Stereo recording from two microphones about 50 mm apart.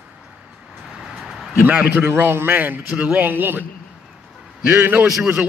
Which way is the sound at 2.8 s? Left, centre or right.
Centre.